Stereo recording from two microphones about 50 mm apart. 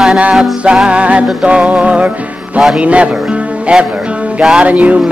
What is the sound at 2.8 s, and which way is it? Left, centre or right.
Speech, right.